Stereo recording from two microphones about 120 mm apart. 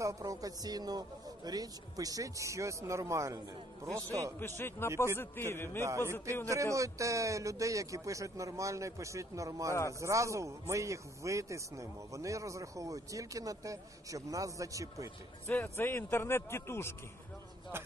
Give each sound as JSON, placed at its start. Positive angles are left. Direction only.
{"t": 0.0, "sound": "speech", "side_deg": -25}
{"t": 4.6, "sound": "a man's voice", "side_deg": 20}
{"t": 5.9, "sound": "speech", "side_deg": -25}
{"t": 15.4, "sound": "a man's voice", "side_deg": 20}